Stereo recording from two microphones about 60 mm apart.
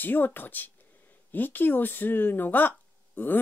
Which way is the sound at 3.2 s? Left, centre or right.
Left.